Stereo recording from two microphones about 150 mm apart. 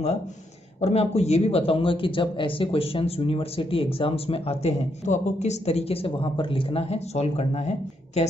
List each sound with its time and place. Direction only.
0.7 s speech: 45° left (ahead or behind)